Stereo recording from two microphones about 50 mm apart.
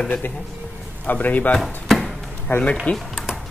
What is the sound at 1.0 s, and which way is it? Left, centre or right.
Speech, left.